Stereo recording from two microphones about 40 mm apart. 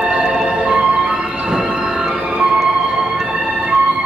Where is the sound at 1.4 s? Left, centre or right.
Centre.